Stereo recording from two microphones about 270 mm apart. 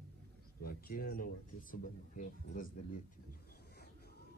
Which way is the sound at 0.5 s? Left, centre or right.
Left.